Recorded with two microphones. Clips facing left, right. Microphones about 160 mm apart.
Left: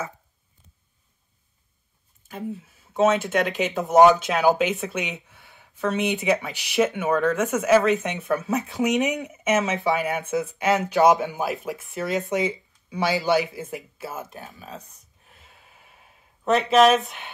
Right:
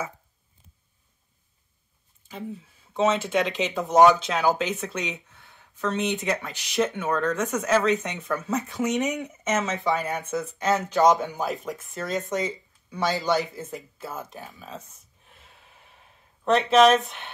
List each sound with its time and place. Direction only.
2.3 s speech: 5° left (ahead or behind)
4.3 s speech: 15° left (ahead or behind); by 17.3 s centre (ahead or behind)